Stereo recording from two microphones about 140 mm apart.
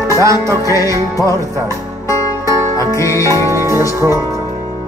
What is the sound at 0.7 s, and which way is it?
Music, 25° left (ahead or behind).